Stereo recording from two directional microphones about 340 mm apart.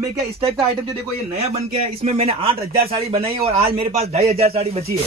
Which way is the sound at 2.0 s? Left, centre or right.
Centre.